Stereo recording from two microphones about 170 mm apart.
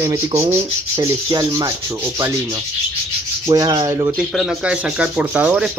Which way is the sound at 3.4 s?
20° right (ahead or behind).